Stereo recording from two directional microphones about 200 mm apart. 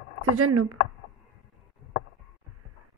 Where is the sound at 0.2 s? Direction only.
90° right.